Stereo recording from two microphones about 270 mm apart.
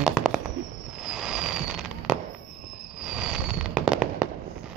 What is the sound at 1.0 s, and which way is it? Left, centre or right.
Fireworks, centre.